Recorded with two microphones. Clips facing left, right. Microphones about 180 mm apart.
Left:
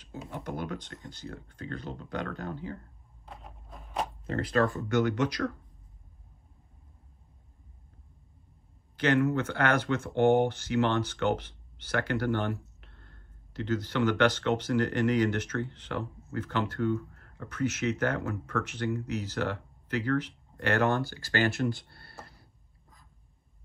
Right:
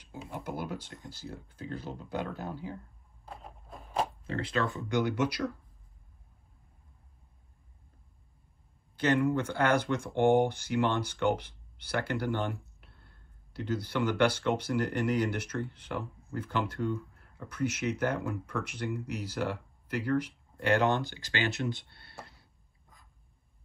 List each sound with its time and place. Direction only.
0.3 s speech: 10° right (ahead or behind)
3.3 s a sound: centre (ahead or behind)
4.8 s speech: 10° right (ahead or behind)
9.1 s speech: 10° right (ahead or behind)